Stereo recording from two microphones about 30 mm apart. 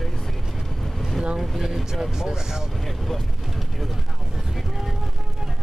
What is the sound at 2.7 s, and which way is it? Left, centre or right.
Boat, centre.